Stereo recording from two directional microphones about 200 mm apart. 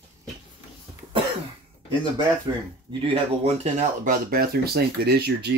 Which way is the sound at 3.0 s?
30° right (ahead or behind).